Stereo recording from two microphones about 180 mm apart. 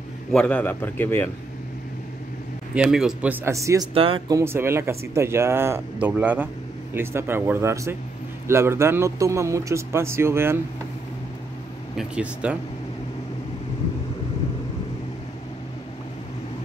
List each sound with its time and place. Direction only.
0.3 s a man's voice: 5° left (ahead or behind)
2.7 s speech: 5° right (ahead or behind)
3.9 s speech: 30° right (ahead or behind)
4.4 s speech: 15° right (ahead or behind)
12.0 s speech: 5° right (ahead or behind)